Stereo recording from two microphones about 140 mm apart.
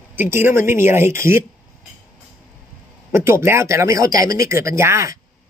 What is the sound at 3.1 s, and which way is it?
Speech, 20° right (ahead or behind).